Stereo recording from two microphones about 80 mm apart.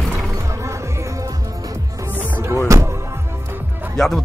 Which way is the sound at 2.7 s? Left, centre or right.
Right.